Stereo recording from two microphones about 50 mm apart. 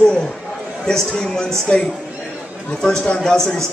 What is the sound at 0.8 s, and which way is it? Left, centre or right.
Speech, centre.